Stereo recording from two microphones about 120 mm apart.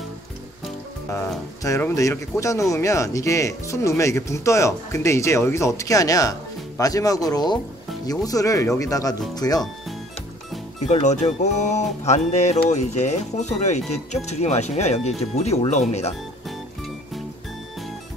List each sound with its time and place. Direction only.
1.8 s speech: 20° left (ahead or behind)
10.9 s speech: 75° left (ahead or behind)
16.4 s music: centre (ahead or behind)